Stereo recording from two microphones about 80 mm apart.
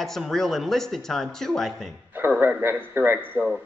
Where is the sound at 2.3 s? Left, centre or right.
Centre.